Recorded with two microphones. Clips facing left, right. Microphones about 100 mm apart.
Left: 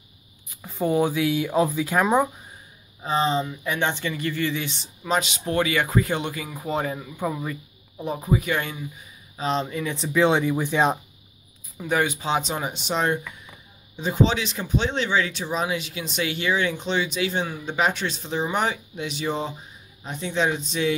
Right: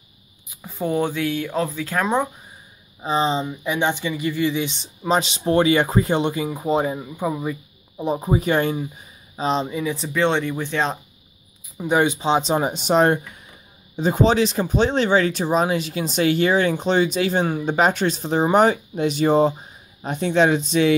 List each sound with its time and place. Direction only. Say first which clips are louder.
0.6 s speech: even; centre (ahead or behind)
3.0 s speech: right 2 dB; 20° right (ahead or behind)
8.0 s speech: right 4 dB; 25° right (ahead or behind)
9.4 s speech: right 3 dB; 20° right (ahead or behind); by 11.0 s 10° left (ahead or behind)
11.8 s speech: right 5 dB; 20° right (ahead or behind); by 13.2 s 50° right (ahead or behind)
13.9 s speech: right 5 dB; 40° right (ahead or behind); by 20.9 s 80° right